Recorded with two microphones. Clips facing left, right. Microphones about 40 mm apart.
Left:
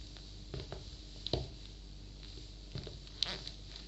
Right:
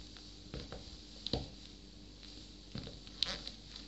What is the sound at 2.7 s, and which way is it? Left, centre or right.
Zipper, centre.